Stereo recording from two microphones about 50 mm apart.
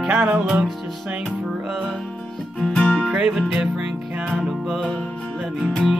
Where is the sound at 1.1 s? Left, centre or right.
Right.